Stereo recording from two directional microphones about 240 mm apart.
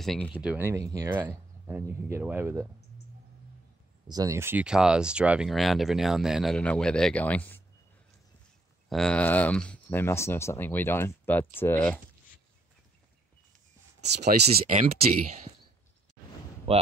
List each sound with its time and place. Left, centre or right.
0.0 s speech: centre
4.1 s speech: centre
8.8 s speech: centre
14.4 s speech: right
16.7 s speech: right